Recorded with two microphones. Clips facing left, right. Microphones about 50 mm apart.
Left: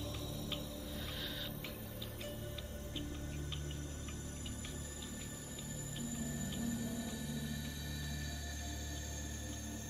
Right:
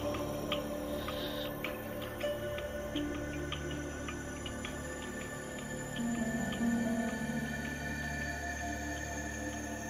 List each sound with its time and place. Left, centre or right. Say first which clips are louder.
5.9 s music: right 9 dB; right